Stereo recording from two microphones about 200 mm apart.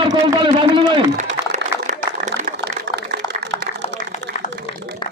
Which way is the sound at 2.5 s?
55° right (ahead or behind).